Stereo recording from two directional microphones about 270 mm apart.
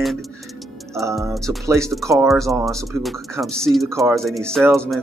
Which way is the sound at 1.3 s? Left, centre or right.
Centre.